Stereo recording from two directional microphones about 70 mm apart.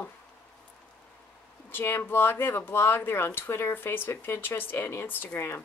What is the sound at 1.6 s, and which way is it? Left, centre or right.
Speech, left.